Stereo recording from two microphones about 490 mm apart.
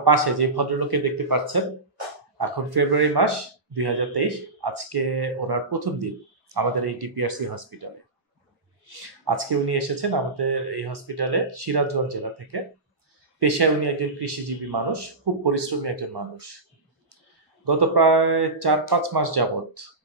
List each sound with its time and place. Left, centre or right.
0.0 s speech: right
8.8 s speech: right
17.6 s speech: right